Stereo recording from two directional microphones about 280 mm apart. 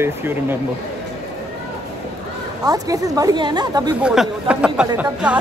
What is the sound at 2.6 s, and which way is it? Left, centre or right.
Speech, centre.